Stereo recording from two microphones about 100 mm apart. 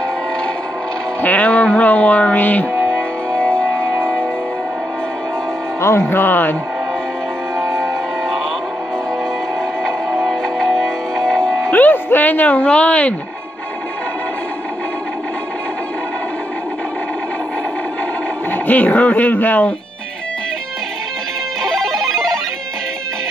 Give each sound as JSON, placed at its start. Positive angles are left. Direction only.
{"t": 1.2, "sound": "music", "side_deg": 15}
{"t": 2.7, "sound": "music", "side_deg": -30}
{"t": 3.3, "sound": "music", "side_deg": 10}
{"t": 5.8, "sound": "music", "side_deg": 25}
{"t": 7.6, "sound": "music", "side_deg": 5}
{"t": 10.2, "sound": "music", "side_deg": 5}
{"t": 11.7, "sound": "music", "side_deg": 20}
{"t": 18.5, "sound": "music", "side_deg": 15}
{"t": 21.6, "sound": "music", "side_deg": 5}